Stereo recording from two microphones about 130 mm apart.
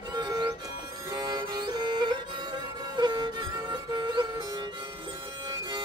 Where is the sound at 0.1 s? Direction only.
30° right (ahead or behind).